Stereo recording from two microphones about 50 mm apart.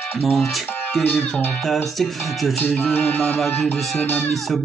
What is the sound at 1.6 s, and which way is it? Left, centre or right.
Music, centre.